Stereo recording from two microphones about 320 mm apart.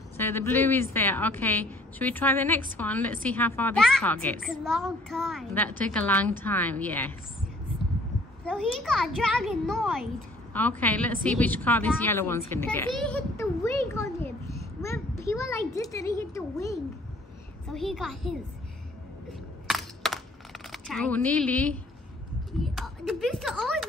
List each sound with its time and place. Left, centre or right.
0.2 s a woman's voice: centre
8.5 s a woman's voice: centre
19.7 s a sound: centre